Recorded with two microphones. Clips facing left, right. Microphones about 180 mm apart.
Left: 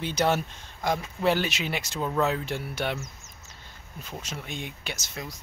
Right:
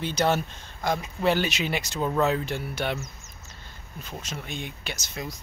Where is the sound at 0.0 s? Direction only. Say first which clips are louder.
Right 1 dB; 10° left (ahead or behind).